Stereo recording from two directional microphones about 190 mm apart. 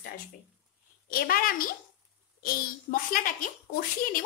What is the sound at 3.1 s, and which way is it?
Speech, 45° left (ahead or behind).